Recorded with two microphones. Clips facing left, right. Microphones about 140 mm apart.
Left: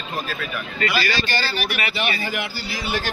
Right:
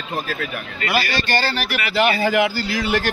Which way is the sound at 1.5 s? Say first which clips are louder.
Right 4 dB; 90° right.